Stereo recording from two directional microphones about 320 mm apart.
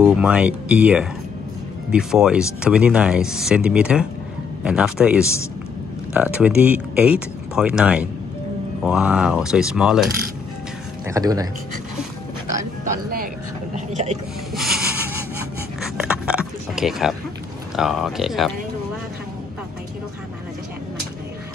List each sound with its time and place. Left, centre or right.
0.0 s speech: centre
5.2 s a man's voice: centre
6.1 s speech: centre
11.1 s speech: centre
13.7 s a sound: right
14.5 s a sound: centre
17.7 s speech: centre